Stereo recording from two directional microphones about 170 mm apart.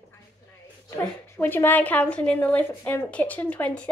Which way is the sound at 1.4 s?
10° left (ahead or behind).